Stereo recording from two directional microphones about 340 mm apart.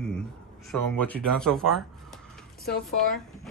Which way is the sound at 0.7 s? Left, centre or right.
Centre.